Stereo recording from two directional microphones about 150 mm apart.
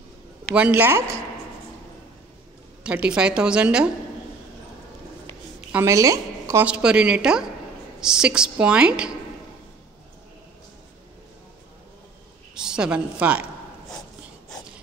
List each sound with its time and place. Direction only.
0.6 s a woman's voice: 10° right (ahead or behind)
2.8 s a woman's voice: 5° right (ahead or behind)
5.7 s a woman's voice: 15° right (ahead or behind)
6.6 s a woman's voice: 5° right (ahead or behind)
12.5 s a woman's voice: 5° right (ahead or behind)